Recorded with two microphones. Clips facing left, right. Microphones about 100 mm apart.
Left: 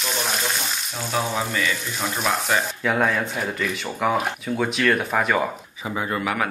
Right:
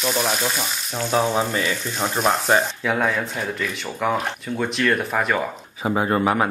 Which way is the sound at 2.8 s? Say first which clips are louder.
Even; centre (ahead or behind).